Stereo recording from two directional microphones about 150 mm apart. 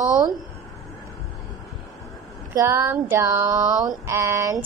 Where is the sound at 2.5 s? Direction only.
20° right (ahead or behind).